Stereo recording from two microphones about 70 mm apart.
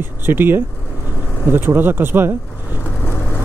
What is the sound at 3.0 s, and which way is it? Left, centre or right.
Vehicle, left.